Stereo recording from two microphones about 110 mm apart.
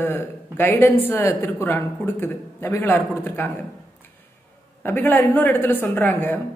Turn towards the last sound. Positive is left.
turn(degrees=15)  # may be behind; listen again after turning